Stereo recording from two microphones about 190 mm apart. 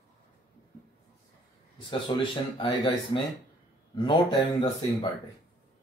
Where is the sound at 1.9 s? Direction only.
25° left (ahead or behind).